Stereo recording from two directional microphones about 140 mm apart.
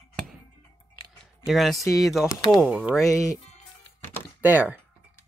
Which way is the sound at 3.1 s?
25° left (ahead or behind).